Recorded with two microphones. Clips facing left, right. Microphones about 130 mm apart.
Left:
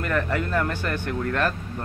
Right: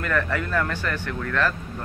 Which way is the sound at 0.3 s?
40° left (ahead or behind).